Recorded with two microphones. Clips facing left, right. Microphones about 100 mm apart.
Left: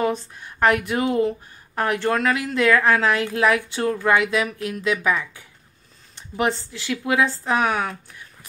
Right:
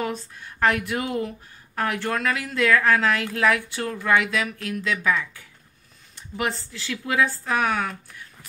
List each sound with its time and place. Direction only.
0.0 s a woman's voice: 20° left (ahead or behind)